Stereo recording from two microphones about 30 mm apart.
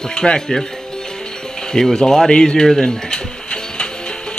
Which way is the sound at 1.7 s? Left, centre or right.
Left.